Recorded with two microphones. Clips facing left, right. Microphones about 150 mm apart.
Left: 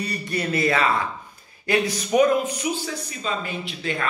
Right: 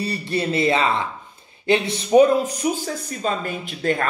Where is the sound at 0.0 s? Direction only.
30° right (ahead or behind).